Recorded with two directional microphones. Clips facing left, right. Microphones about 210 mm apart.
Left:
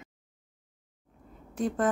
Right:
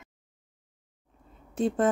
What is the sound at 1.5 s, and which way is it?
Speech, 25° right (ahead or behind).